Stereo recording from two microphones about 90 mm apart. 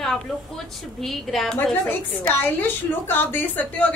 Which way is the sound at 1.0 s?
Centre (ahead or behind).